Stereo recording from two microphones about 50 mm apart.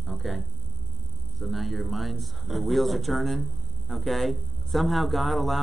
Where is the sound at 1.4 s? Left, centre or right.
Centre.